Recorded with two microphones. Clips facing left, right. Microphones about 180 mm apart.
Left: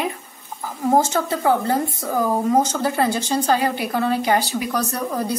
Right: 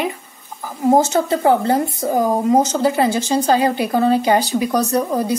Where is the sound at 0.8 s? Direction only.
20° right (ahead or behind).